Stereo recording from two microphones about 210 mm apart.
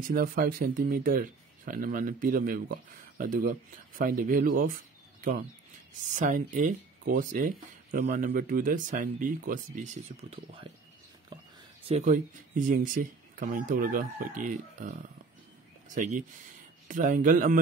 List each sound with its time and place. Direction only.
0.0 s speech: 40° right (ahead or behind)
6.1 s speech: 35° right (ahead or behind)
11.9 s speech: 35° right (ahead or behind)